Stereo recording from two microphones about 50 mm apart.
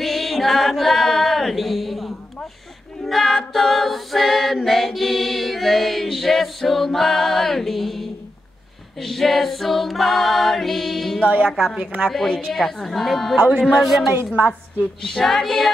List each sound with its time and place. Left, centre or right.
0.0 s a sound: centre
3.0 s a capella: centre
4.6 s mantra: centre
9.0 s mantra: centre
11.4 s female singing: centre
11.8 s a woman's voice: right
12.1 s female singing: centre
12.5 s mantra: centre
13.4 s speech: right
13.7 s mantra: centre
14.8 s female singing: centre